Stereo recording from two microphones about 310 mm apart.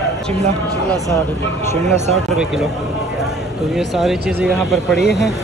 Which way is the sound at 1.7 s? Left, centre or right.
Right.